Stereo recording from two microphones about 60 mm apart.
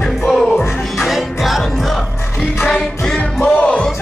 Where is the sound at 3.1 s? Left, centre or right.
Left.